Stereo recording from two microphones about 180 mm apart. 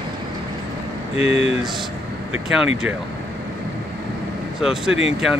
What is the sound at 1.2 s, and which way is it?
Speech, 35° left (ahead or behind).